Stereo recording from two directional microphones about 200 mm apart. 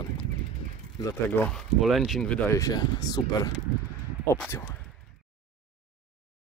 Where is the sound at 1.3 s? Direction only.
5° left (ahead or behind).